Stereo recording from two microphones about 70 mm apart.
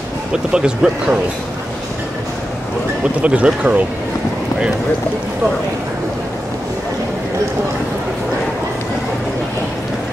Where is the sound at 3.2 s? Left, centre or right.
Centre.